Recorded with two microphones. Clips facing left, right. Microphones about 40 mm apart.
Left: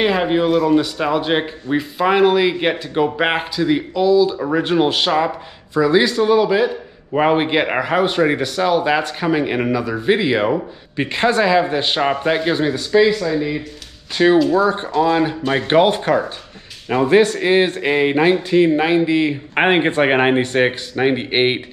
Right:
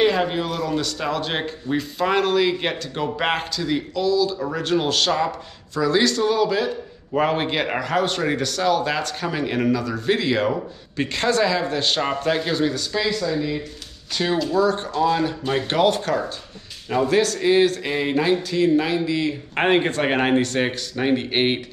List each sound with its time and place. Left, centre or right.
0.0 s speech: centre